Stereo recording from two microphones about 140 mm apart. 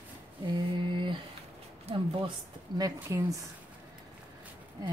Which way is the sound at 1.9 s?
40° right (ahead or behind).